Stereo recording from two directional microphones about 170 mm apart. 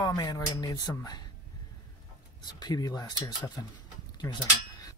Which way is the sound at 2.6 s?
25° left (ahead or behind).